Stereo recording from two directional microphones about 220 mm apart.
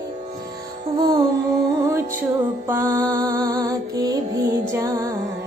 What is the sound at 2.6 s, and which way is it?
Music, 10° right (ahead or behind).